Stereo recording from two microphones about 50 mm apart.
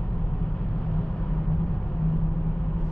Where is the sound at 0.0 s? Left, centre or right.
Centre.